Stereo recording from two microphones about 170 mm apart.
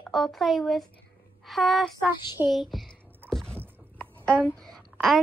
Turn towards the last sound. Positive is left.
turn(degrees=0)  # may be behind; listen again after turning